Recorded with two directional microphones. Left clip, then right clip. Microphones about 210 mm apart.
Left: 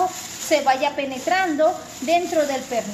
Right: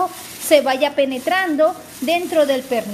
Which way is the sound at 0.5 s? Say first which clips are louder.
Right 4 dB; 45° right (ahead or behind).